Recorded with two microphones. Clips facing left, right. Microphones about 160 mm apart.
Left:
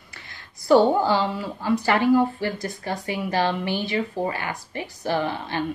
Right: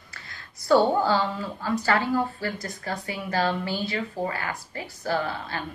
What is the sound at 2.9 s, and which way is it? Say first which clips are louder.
Speech: left 3 dB; 30° left (ahead or behind).